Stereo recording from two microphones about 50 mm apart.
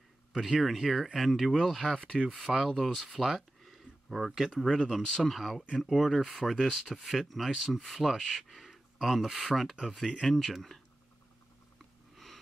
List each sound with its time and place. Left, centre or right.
0.3 s speech: centre
1.9 s speech: centre
2.5 s speech: centre
3.2 s speech: centre